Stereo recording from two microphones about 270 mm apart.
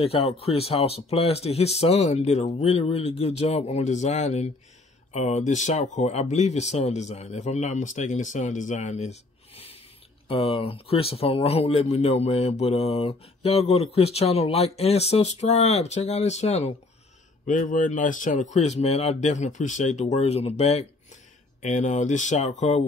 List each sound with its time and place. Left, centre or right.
0.0 s speech: left